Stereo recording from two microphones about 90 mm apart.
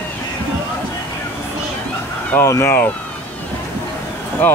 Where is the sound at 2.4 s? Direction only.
35° left (ahead or behind).